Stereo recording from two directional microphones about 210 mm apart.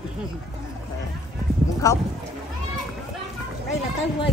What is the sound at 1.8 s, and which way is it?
Speech, 15° left (ahead or behind).